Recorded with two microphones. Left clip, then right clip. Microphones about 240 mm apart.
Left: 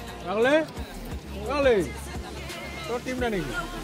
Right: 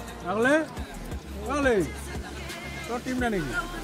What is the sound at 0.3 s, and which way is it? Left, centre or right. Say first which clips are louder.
Speech: left 1 dB; right.